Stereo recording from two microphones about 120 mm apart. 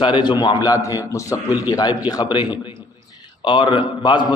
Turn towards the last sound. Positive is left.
turn(degrees=40)  # may be behind; listen again after turning